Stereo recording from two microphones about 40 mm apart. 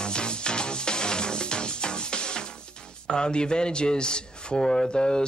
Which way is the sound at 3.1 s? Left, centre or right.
Left.